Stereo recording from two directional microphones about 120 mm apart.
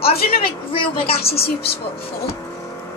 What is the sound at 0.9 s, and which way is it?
Speech, 55° left (ahead or behind).